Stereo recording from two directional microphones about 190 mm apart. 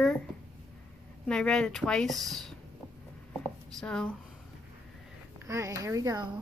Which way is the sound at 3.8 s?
5° left (ahead or behind).